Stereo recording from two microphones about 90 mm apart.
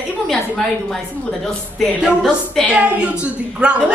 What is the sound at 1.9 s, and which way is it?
A woman's voice, 10° right (ahead or behind).